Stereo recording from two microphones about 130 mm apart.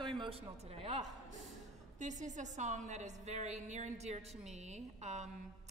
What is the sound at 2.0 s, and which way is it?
A woman's voice, 65° right (ahead or behind).